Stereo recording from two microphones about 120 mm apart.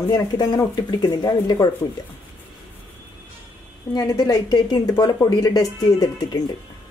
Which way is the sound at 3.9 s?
30° left (ahead or behind).